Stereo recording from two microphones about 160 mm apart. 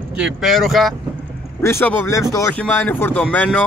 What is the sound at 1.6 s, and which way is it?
Speech, 15° left (ahead or behind).